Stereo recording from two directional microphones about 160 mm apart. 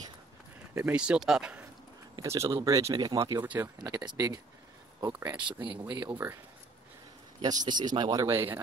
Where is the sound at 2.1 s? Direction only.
20° right (ahead or behind).